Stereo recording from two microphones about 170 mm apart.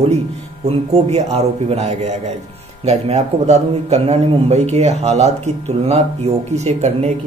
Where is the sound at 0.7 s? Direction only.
35° right (ahead or behind).